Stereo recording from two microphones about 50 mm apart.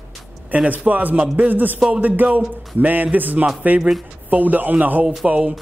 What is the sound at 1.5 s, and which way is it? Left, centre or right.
A man's voice, right.